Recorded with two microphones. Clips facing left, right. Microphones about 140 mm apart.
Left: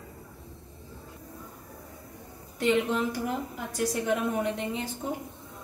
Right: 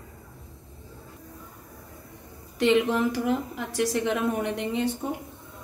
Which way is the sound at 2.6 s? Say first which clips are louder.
Right 4 dB; 80° right.